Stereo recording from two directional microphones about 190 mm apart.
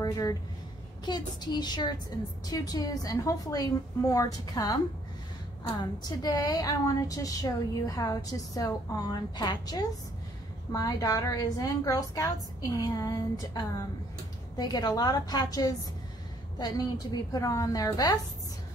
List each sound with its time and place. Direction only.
0.0 s a woman's voice: 20° left (ahead or behind)
6.0 s a woman's voice: 20° left (ahead or behind)